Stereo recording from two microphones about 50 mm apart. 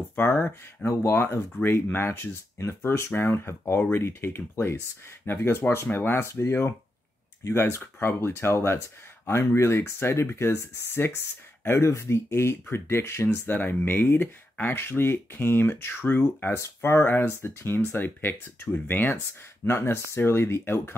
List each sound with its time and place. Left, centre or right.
0.1 s speech: left
0.8 s speech: left
6.2 s speech: left
13.5 s speech: left
19.6 s speech: left